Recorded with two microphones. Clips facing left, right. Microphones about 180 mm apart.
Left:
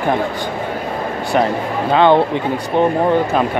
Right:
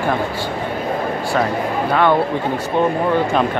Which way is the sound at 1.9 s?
25° left (ahead or behind).